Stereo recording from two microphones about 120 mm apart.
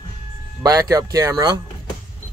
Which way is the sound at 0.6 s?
30° right (ahead or behind).